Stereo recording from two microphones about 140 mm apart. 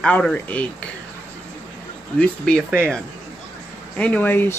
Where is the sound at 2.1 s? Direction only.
5° left (ahead or behind).